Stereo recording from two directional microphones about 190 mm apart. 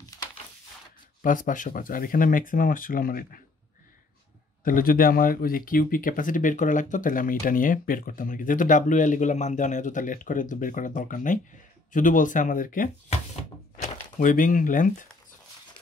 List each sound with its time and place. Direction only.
1.2 s speech: 45° left (ahead or behind)
4.6 s speech: 45° left (ahead or behind)
13.4 s a sound: 40° left (ahead or behind)